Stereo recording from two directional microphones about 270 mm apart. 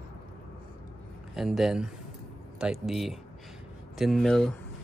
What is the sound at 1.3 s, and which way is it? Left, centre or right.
Speech, centre.